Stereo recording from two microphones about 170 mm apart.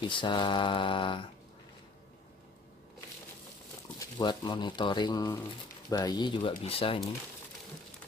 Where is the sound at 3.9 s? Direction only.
25° left (ahead or behind).